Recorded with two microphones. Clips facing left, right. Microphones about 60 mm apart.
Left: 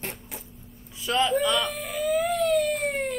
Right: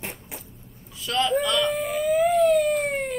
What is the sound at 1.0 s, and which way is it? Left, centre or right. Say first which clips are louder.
Speech: even; centre.